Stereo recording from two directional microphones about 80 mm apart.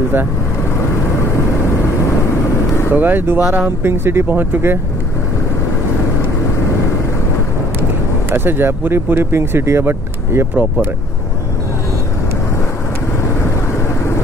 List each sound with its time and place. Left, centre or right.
2.9 s speech: right
8.3 s speech: right
10.5 s speech: centre